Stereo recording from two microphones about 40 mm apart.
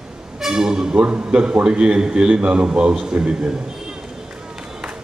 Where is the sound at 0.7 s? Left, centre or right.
Right.